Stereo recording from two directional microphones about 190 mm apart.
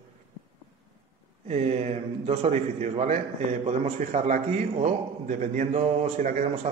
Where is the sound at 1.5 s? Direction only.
35° right (ahead or behind).